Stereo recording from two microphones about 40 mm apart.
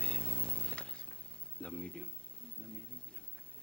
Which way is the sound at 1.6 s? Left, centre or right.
Left.